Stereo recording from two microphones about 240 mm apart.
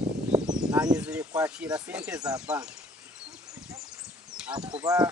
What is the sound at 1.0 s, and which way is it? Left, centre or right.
Speech, centre.